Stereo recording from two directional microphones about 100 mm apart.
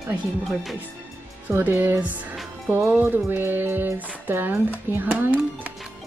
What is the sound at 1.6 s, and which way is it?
Speech, 20° right (ahead or behind).